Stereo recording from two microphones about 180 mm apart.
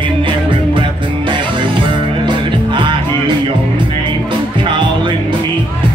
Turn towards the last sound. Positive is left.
turn(degrees=-30)  # may be behind; listen again after turning